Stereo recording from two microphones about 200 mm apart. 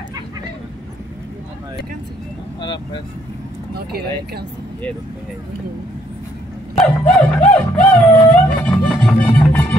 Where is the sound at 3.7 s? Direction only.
50° right (ahead or behind).